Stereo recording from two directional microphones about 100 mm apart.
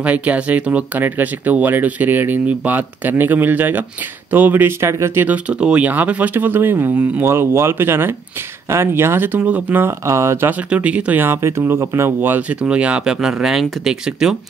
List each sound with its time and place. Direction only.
0.0 s speech: 15° right (ahead or behind)
10.7 s speech: 10° right (ahead or behind)